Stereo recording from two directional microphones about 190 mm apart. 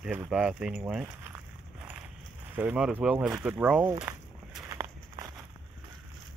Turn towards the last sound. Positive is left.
turn(degrees=-20)  # may be behind; listen again after turning